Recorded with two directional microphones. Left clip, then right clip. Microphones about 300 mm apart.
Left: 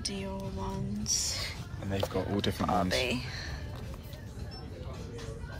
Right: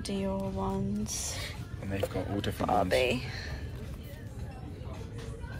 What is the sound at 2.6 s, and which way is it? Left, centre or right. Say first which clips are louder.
Speech: right 4 dB; centre.